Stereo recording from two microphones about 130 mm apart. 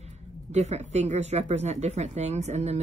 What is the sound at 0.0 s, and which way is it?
A woman's voice, 60° right (ahead or behind).